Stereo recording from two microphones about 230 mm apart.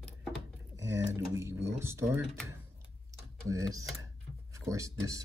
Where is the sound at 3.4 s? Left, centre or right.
Centre.